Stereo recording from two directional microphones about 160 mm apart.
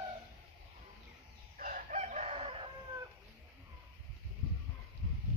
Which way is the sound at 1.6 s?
55° right (ahead or behind).